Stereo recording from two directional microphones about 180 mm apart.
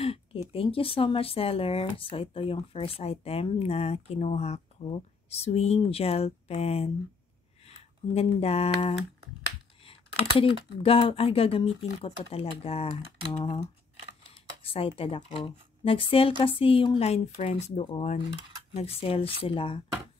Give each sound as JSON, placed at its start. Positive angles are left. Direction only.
{"t": 0.0, "sound": "speech", "side_deg": 30}
{"t": 14.6, "sound": "speech", "side_deg": 30}